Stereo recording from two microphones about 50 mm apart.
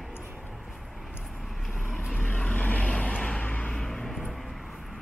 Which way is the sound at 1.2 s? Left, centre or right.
Centre.